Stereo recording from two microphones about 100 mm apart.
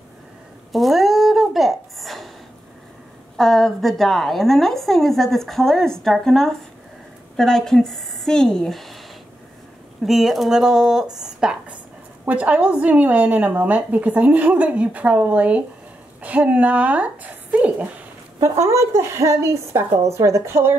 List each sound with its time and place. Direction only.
0.7 s a sound: centre (ahead or behind)
3.3 s a woman's voice: 5° left (ahead or behind)
10.0 s a woman's voice: 5° right (ahead or behind)
11.1 s a sound: 5° right (ahead or behind)
12.3 s a woman's voice: 15° right (ahead or behind)
18.4 s a woman's voice: 30° right (ahead or behind)